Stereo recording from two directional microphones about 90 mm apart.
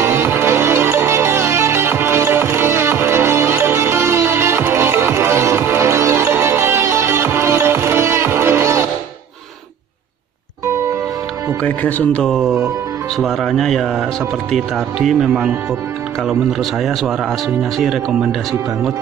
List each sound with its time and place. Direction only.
0.0 s music: 30° right (ahead or behind)
11.6 s speech: 20° left (ahead or behind)
12.2 s speech: 5° left (ahead or behind)